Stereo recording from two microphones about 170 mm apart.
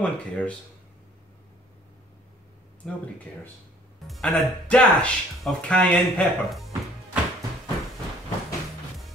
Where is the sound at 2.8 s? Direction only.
5° left (ahead or behind).